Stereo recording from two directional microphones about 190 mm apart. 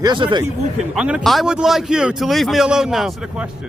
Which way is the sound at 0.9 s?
5° right (ahead or behind).